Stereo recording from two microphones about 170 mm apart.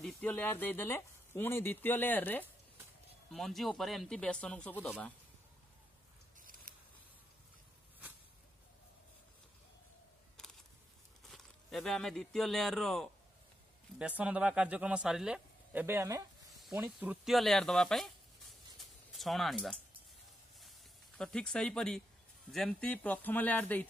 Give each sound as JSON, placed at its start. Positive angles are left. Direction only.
{"t": 0.0, "sound": "speech", "side_deg": 10}
{"t": 6.7, "sound": "a sound", "side_deg": -55}
{"t": 11.2, "sound": "speech", "side_deg": 0}
{"t": 21.2, "sound": "speech", "side_deg": 5}